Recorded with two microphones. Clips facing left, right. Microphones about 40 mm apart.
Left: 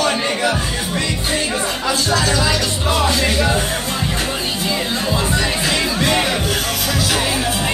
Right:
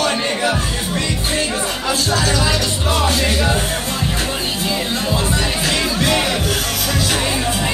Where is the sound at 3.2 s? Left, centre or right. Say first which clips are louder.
Left 1 dB; centre.